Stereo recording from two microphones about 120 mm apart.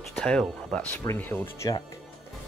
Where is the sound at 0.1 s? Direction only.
10° left (ahead or behind).